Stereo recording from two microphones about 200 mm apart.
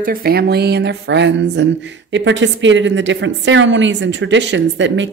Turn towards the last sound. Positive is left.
turn(degrees=-65)  # may be behind; listen again after turning